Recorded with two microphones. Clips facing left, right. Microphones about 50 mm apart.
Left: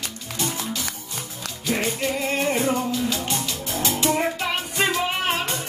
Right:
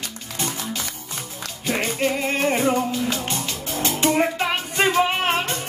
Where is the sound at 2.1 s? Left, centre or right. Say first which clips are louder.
Right 1 dB; right.